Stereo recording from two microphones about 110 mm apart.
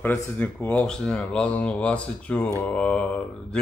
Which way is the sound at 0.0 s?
15° left (ahead or behind).